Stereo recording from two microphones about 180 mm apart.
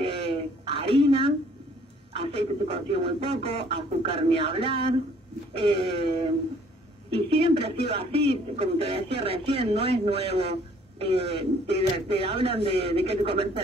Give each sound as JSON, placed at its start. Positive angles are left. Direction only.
{"t": 0.0, "sound": "a sound", "side_deg": -30}
{"t": 2.1, "sound": "speech", "side_deg": -35}
{"t": 7.1, "sound": "a woman's voice", "side_deg": -30}